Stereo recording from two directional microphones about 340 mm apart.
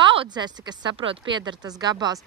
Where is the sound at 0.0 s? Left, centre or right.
Centre.